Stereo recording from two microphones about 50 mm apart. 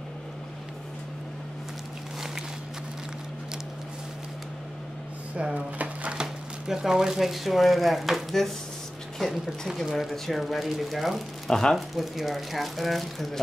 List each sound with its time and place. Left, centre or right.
5.3 s a sound: right
6.2 s speech: centre
11.5 s speech: centre
11.9 s speech: centre